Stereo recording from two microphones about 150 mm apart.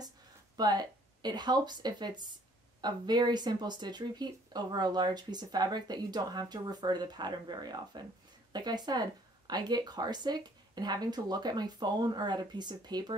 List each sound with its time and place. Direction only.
0.6 s speech: 25° right (ahead or behind)